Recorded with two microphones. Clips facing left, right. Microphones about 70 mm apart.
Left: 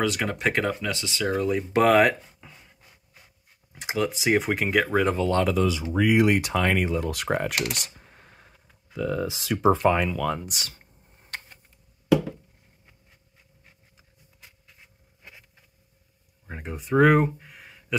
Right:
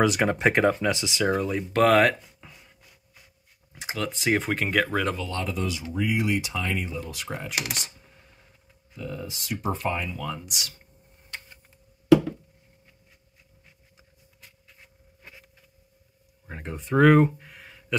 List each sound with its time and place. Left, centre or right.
0.0 s speech: centre
1.3 s speech: centre
1.8 s a sound: centre
3.8 s speech: centre
5.1 s speech: left
5.4 s speech: left
8.9 s speech: left
10.2 s speech: left
16.4 s a sound: centre